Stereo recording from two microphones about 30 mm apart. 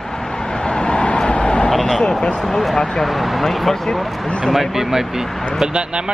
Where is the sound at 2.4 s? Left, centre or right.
Centre.